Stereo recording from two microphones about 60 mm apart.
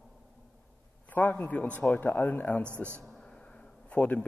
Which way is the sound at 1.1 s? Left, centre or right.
Left.